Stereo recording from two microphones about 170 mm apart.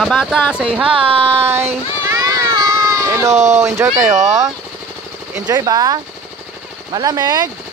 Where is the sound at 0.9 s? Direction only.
30° right (ahead or behind).